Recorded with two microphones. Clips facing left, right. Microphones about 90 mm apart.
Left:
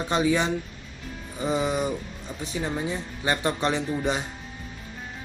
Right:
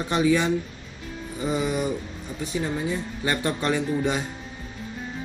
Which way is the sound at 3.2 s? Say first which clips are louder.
Left 2 dB; 25° left (ahead or behind).